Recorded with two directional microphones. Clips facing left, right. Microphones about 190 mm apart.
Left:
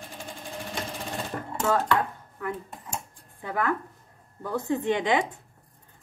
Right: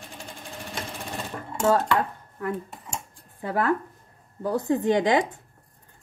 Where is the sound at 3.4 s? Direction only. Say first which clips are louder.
Right 4 dB; 35° right (ahead or behind).